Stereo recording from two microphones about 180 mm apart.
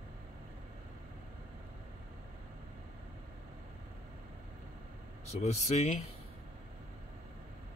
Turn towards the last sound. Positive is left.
turn(degrees=40)  # may be behind; listen again after turning